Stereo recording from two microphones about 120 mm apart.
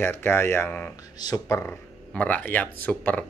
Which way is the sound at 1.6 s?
15° left (ahead or behind).